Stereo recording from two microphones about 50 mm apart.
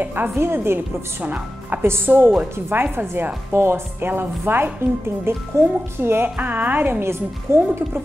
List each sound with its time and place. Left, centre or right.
0.0 s speech: right
0.4 s a woman's voice: right
0.7 s speech: right
1.8 s speech: right
3.5 s a woman's voice: right
5.6 s a woman's voice: right
5.9 s speech: right
6.2 s speech: right
7.0 s a woman's voice: right